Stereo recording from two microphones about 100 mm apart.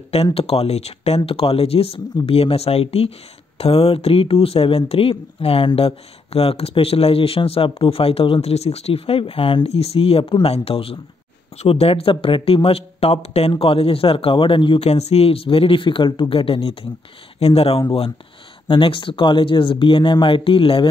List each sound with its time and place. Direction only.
0.1 s speech: 80° left
11.5 s speech: 90° left
13.6 s speech: 70° left (ahead or behind)
17.4 s speech: 80° left
18.7 s speech: 60° left (ahead or behind)